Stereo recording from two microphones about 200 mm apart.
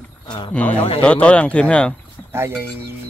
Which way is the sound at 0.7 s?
25° left (ahead or behind).